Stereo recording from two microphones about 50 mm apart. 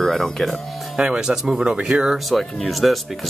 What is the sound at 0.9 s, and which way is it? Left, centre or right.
Speech, centre.